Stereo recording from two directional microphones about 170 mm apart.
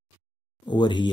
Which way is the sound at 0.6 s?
25° left (ahead or behind).